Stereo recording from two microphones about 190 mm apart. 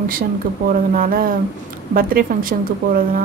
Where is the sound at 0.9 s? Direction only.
50° right (ahead or behind).